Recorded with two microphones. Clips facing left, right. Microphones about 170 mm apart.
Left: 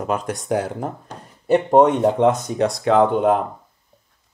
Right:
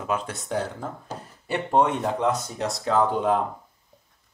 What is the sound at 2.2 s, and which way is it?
Speech, 85° left.